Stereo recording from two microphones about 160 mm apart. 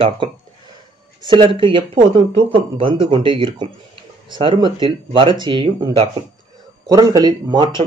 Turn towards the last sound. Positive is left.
turn(degrees=-30)  # may be behind; listen again after turning